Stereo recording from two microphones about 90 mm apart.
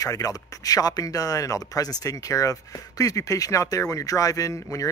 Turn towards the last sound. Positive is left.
turn(degrees=35)  # may be behind; listen again after turning